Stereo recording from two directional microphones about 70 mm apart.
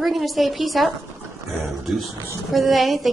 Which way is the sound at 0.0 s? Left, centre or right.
Centre.